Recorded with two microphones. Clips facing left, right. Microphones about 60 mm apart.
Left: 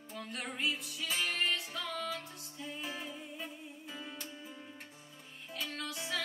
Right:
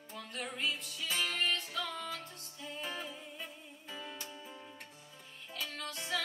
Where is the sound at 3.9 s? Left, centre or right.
Centre.